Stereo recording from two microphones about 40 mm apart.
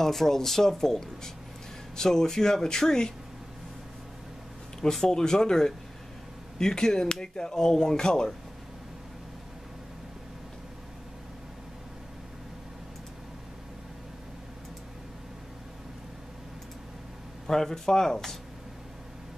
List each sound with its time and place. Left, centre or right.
0.0 s speech: centre
5.0 s speech: centre
17.5 s speech: centre